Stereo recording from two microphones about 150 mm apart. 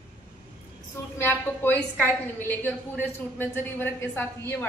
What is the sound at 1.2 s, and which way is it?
A woman's voice, 15° left (ahead or behind).